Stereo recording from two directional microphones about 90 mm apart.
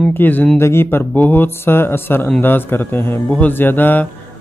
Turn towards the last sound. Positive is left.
turn(degrees=20)  # may be behind; listen again after turning